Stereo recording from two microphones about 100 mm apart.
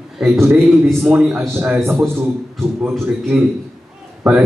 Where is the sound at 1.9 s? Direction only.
25° right (ahead or behind).